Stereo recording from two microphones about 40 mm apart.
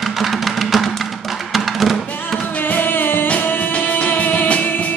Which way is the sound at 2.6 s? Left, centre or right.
Left.